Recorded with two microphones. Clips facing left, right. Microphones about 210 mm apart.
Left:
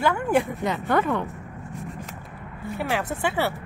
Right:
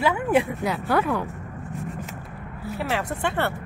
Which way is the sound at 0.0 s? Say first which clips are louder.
Right 1 dB; 5° right (ahead or behind).